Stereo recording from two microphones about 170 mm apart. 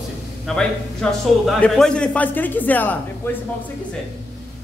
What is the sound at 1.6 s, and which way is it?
A man's voice, 5° left (ahead or behind).